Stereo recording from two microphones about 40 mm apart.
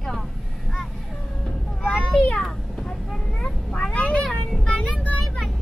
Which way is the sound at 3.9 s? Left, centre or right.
Left.